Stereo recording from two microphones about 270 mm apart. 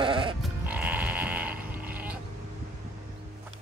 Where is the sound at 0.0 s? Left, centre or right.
Centre.